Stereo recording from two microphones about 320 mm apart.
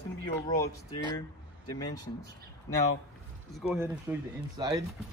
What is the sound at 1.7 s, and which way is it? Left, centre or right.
Speech, centre.